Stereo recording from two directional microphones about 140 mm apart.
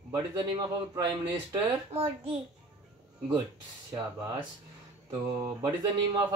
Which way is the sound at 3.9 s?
30° right (ahead or behind).